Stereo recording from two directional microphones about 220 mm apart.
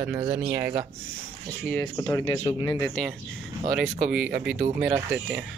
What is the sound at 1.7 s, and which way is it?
Speech, 5° left (ahead or behind).